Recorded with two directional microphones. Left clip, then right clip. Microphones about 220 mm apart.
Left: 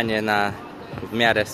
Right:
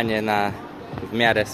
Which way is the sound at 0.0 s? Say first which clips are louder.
Even; 10° left (ahead or behind).